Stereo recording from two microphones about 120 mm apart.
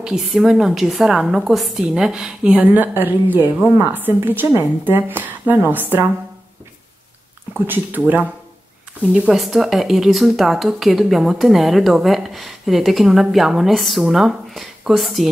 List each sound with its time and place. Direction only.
0.0 s a woman's voice: 5° right (ahead or behind)
7.5 s a woman's voice: 15° right (ahead or behind); by 15.2 s centre (ahead or behind)